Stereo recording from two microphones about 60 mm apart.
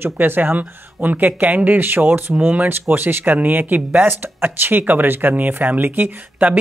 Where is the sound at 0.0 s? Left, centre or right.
Right.